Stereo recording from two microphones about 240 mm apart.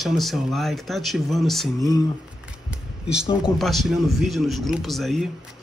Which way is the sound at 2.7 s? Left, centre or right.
Centre.